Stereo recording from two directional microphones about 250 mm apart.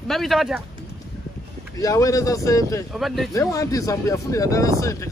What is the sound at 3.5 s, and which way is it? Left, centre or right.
Speech, centre.